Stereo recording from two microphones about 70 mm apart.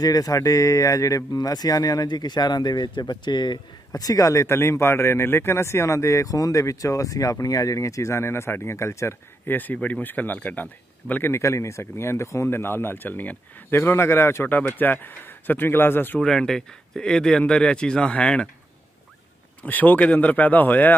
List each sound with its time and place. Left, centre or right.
0.0 s speech: left
9.6 s speech: left
11.3 s speech: left
16.2 s speech: centre
19.6 s speech: left